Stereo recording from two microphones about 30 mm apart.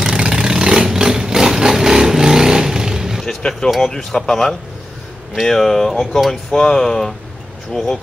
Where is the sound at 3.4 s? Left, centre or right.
Left.